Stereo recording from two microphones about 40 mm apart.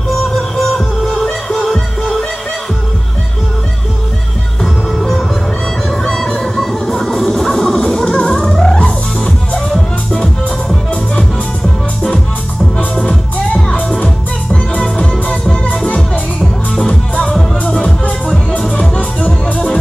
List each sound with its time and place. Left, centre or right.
0.4 s music: centre
6.0 s music: centre
13.5 s music: centre
15.7 s music: left
17.2 s music: centre